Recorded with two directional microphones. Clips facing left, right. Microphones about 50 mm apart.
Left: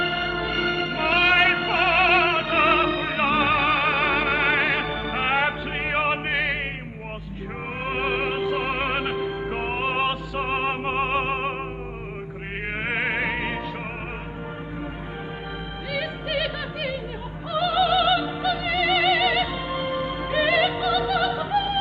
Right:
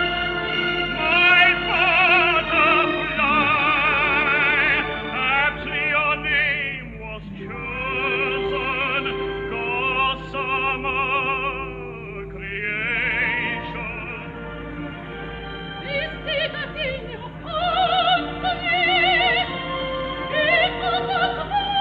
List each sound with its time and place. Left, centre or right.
0.0 s music: right
7.8 s music: centre
12.6 s music: right
15.9 s music: right